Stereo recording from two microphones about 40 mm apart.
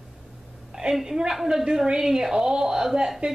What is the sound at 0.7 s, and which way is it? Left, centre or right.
A woman's voice, centre.